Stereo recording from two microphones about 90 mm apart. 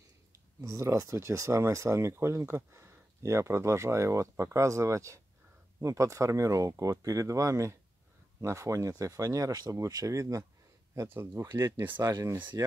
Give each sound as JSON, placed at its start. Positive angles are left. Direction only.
{"t": 0.3, "sound": "speech", "side_deg": -35}